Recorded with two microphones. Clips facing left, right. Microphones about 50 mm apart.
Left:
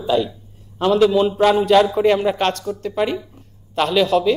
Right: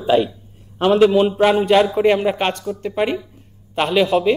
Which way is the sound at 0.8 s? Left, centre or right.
Right.